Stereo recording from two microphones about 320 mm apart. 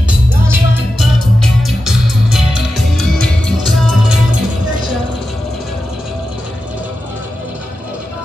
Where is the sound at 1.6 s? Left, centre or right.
Centre.